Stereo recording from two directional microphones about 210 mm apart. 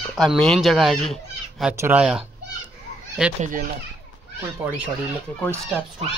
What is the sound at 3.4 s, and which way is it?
Speech, 40° right (ahead or behind).